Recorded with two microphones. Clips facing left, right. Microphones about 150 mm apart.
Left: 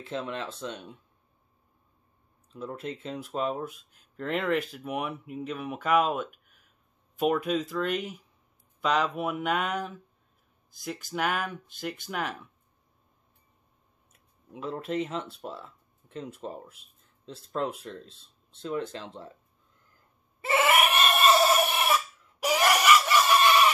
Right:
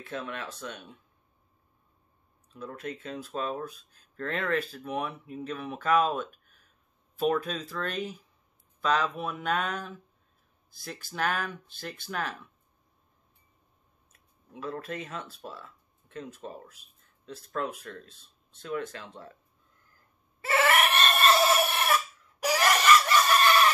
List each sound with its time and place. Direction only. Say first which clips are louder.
0.0 s speech: left 3 dB; 25° left (ahead or behind)
2.5 s speech: left 2 dB; 25° left (ahead or behind)
14.5 s speech: left 4 dB; 20° left (ahead or behind)
20.4 s goat: left 1 dB; 15° left (ahead or behind)
22.4 s chicken: left 1 dB; 15° left (ahead or behind)